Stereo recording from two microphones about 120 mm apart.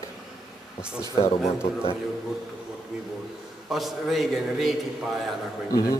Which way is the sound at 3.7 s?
Centre (ahead or behind).